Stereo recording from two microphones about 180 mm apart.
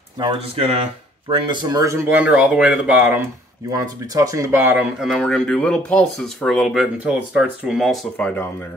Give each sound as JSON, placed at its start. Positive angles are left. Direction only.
{"t": 0.2, "sound": "speech", "side_deg": -35}
{"t": 2.3, "sound": "speech", "side_deg": -5}
{"t": 5.0, "sound": "speech", "side_deg": 0}